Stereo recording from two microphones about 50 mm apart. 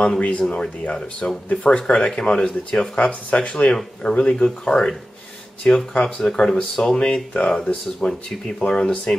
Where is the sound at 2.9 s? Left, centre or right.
Left.